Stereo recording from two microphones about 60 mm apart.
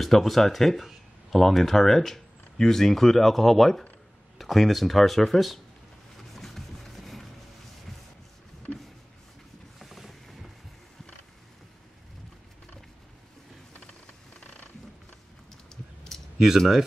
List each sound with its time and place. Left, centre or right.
0.0 s speech: centre
6.3 s music: centre
9.8 s boat: centre
13.7 s a sound: left
15.7 s a sound: centre
16.3 s speech: centre